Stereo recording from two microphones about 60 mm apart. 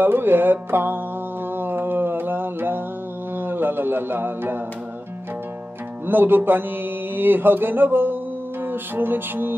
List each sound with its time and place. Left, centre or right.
0.0 s mantra: right
6.0 s mantra: right
8.6 s music: right